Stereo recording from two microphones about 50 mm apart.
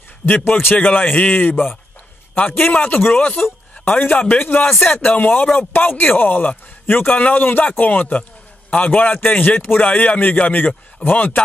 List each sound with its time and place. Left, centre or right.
0.2 s a man's voice: left